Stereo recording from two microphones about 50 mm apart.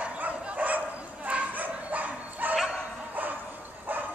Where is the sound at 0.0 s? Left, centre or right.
Right.